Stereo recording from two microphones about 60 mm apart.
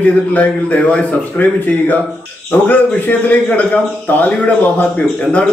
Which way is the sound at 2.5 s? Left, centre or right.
Left.